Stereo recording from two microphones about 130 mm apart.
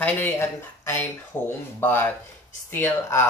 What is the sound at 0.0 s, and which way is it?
Speech, 15° left (ahead or behind).